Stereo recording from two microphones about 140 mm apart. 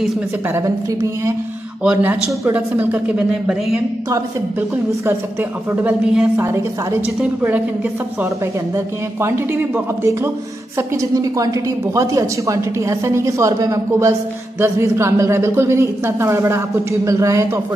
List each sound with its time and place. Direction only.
1.8 s speech: 10° right (ahead or behind)
4.1 s speech: 15° right (ahead or behind)
8.7 s a woman's voice: 15° right (ahead or behind)